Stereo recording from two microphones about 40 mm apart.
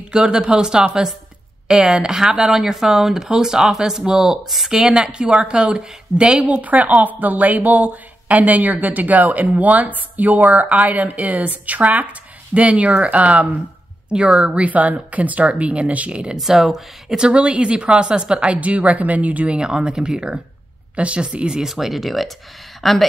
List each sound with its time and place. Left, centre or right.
0.1 s a woman's voice: right
2.5 s speech: centre
4.6 s a woman's voice: right
6.6 s a woman's voice: right
14.7 s speech: right
16.3 s speech: centre
17.2 s a woman's voice: right
18.5 s speech: right
19.4 s a woman's voice: right
21.6 s speech: centre